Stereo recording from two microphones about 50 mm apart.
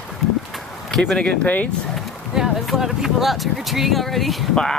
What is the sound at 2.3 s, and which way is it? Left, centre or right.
Speech, centre.